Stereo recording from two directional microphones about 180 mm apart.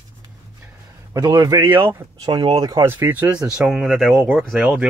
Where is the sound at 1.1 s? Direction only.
20° right (ahead or behind).